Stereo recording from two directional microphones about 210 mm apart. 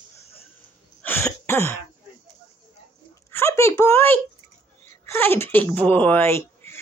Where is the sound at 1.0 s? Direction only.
10° left (ahead or behind).